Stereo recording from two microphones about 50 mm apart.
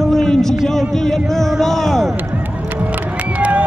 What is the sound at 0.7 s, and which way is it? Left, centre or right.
Speech, centre.